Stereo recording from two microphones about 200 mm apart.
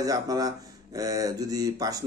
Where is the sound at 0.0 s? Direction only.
15° right (ahead or behind).